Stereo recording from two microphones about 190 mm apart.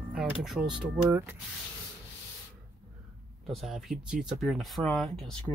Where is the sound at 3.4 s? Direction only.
Centre (ahead or behind).